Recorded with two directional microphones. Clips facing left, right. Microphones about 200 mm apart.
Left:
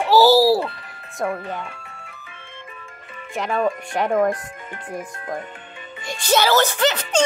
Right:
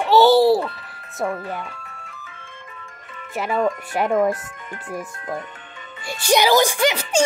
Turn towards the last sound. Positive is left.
turn(degrees=-10)  # may be behind; listen again after turning